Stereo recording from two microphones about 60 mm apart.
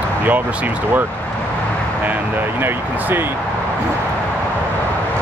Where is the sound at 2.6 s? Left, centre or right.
Right.